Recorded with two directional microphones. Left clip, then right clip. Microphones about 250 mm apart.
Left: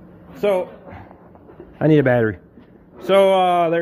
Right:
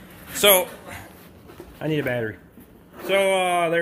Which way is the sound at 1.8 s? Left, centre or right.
Left.